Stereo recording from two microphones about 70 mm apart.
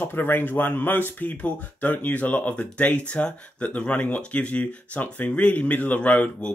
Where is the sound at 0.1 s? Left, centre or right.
Left.